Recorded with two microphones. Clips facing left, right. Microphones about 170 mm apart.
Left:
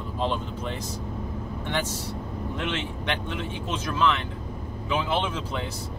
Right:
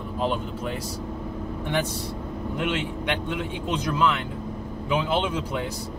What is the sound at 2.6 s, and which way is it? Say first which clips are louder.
Speech: right 5 dB; 10° right (ahead or behind).